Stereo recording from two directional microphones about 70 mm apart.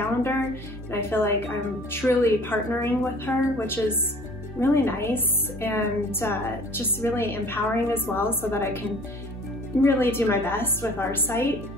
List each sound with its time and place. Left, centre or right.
0.9 s a woman's voice: left
9.8 s a woman's voice: left